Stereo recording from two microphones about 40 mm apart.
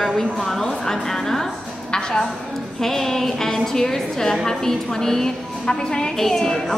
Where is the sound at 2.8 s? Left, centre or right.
Centre.